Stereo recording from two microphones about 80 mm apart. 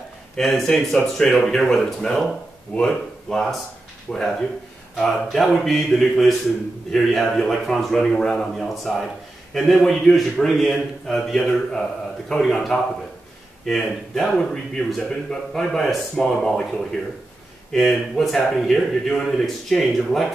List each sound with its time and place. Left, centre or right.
0.4 s a man's voice: centre